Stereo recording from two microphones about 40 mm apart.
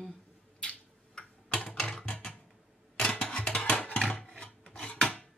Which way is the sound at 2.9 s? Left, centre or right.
Left.